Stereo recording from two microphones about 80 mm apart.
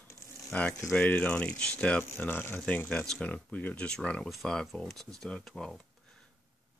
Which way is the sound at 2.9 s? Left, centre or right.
Centre.